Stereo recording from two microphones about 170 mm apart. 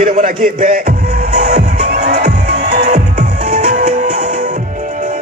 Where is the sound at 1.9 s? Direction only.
60° right (ahead or behind).